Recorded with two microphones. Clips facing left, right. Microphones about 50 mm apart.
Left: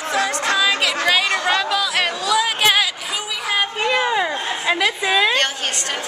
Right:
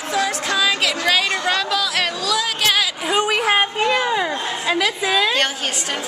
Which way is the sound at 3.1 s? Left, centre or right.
Right.